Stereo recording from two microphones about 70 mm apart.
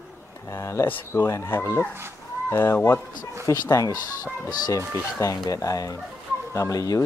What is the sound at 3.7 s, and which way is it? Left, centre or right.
Speech, left.